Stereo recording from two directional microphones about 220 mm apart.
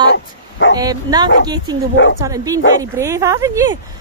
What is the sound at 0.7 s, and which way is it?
Speech, 15° right (ahead or behind).